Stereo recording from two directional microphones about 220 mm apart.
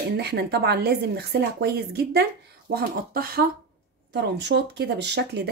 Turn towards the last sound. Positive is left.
turn(degrees=-50)  # may be behind; listen again after turning